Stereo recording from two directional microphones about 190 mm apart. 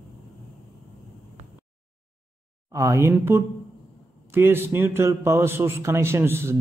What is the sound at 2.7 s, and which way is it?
Speech, 15° right (ahead or behind).